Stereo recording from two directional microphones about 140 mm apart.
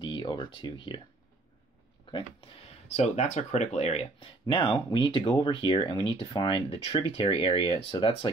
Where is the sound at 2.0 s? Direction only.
35° left (ahead or behind).